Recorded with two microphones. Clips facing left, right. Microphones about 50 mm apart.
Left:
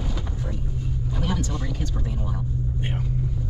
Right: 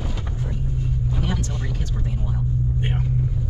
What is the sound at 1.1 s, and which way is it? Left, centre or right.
Vehicle, centre.